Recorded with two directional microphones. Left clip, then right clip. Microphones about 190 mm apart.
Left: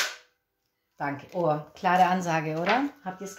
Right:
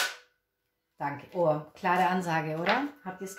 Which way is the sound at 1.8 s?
40° left (ahead or behind).